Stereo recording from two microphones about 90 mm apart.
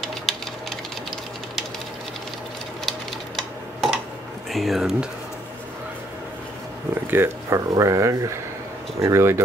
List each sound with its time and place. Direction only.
0.0 s a sound: 5° left (ahead or behind)
2.8 s typing: centre (ahead or behind)
4.5 s speech: centre (ahead or behind)
7.1 s speech: 25° right (ahead or behind)
7.5 s speech: 40° right (ahead or behind)